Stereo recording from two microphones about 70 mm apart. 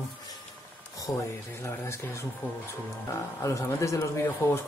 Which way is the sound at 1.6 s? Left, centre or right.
Left.